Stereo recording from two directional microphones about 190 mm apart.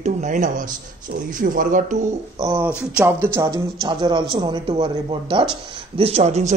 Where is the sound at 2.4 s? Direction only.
10° right (ahead or behind).